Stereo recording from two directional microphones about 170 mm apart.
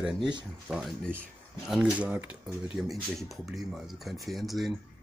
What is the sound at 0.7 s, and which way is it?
Speech, centre (ahead or behind).